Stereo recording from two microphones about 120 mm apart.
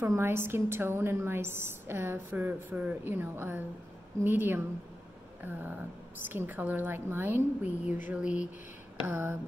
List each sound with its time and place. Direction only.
0.0 s a woman's voice: 20° right (ahead or behind)